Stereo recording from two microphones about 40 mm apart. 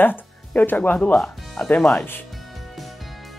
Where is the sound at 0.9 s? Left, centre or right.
Left.